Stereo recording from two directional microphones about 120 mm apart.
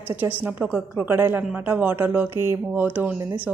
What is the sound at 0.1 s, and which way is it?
A woman's voice, 15° right (ahead or behind).